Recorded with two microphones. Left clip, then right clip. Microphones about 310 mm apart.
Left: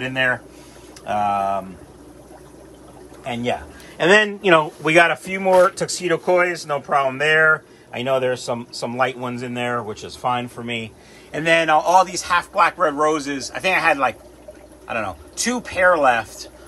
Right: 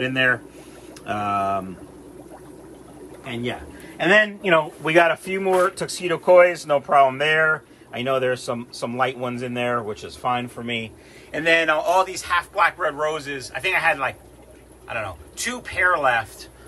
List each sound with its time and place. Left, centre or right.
0.0 s speech: centre
4.0 s a man's voice: centre